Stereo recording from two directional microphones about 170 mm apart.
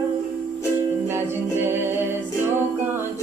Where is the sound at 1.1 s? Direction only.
15° right (ahead or behind).